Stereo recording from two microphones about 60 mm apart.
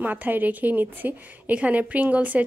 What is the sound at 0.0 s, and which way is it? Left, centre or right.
Speech, right.